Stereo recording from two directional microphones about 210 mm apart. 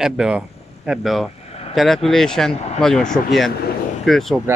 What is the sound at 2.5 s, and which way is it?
Speech, 30° left (ahead or behind).